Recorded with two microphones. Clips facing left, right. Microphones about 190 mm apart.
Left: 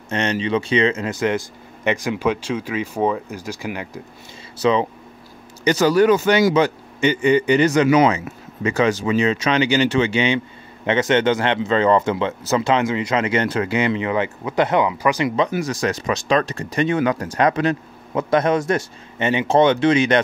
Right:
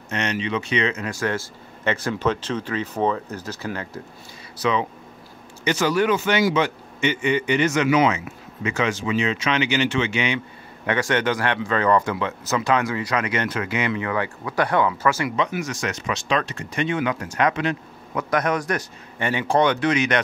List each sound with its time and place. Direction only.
0.1 s speech: 30° left (ahead or behind); by 4.0 s 15° left (ahead or behind)
4.6 s a man's voice: 30° left (ahead or behind)
15.3 s a man's voice: 35° left (ahead or behind)
18.1 s speech: 25° left (ahead or behind)